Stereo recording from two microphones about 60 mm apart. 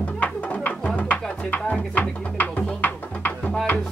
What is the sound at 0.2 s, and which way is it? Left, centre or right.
Music, left.